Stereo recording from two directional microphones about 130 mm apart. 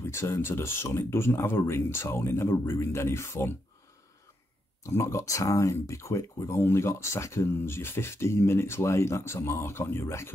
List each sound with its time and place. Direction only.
0.0 s speech: 20° left (ahead or behind)
4.8 s speech: 25° left (ahead or behind)